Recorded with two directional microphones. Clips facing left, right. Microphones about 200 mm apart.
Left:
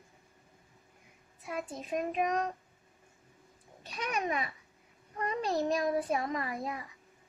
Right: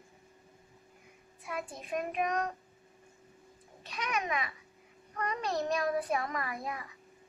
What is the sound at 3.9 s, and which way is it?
Speech, 35° left (ahead or behind).